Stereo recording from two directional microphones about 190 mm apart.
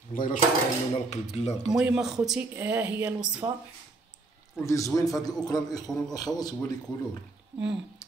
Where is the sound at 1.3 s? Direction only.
35° left (ahead or behind).